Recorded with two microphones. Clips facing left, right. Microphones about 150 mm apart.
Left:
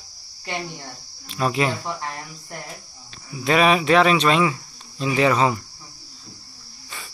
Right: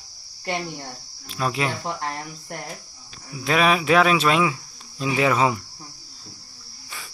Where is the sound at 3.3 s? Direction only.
Centre (ahead or behind).